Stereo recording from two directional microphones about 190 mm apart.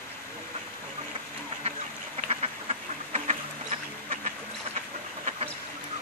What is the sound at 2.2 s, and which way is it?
Duck, 35° right (ahead or behind).